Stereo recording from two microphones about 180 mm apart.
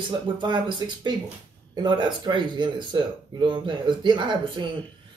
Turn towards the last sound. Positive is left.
turn(degrees=-25)  # may be behind; listen again after turning